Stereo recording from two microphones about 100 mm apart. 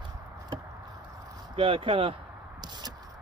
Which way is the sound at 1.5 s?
65° right (ahead or behind).